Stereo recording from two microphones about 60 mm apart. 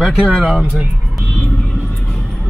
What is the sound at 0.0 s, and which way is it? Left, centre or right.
Speech, centre.